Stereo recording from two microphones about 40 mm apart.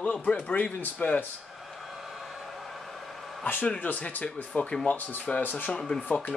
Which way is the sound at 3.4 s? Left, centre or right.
Left.